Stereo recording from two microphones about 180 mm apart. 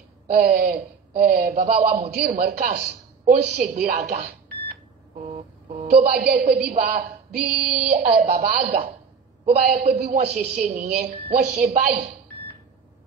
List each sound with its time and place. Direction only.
0.3 s a woman's voice: 55° right (ahead or behind)
5.1 s vehicle: 40° right (ahead or behind)
5.7 s a woman's voice: 25° right (ahead or behind)
6.0 s a woman's voice: 60° right (ahead or behind)
11.7 s a woman's voice: 45° right (ahead or behind)